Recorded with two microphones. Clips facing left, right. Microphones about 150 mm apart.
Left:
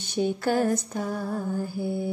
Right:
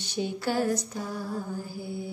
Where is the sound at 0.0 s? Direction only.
50° left (ahead or behind).